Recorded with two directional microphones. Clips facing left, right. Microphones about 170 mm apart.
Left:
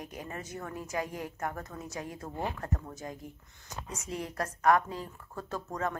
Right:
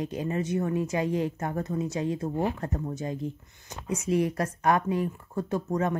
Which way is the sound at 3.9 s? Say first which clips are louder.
Right 13 dB; 75° right (ahead or behind).